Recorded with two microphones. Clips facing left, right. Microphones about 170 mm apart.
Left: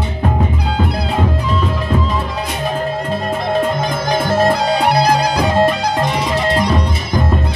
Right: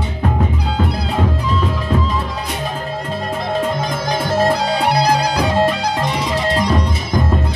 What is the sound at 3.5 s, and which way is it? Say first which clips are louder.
Music: left 3 dB; 60° left (ahead or behind).